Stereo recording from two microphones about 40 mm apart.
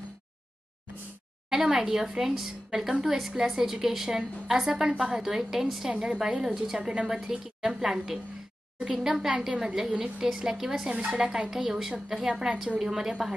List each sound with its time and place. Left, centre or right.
1.5 s a woman's voice: centre
11.2 s a woman's voice: right
11.5 s a woman's voice: centre